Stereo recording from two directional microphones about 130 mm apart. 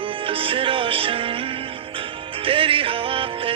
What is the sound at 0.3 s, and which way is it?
Music, 45° right (ahead or behind).